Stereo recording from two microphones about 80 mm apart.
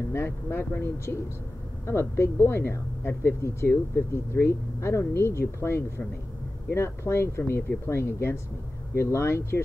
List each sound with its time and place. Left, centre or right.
0.1 s speech: left